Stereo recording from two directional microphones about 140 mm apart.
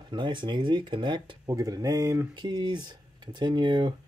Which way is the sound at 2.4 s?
35° right (ahead or behind).